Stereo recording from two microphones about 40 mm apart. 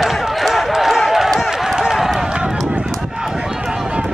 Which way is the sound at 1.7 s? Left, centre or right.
Centre.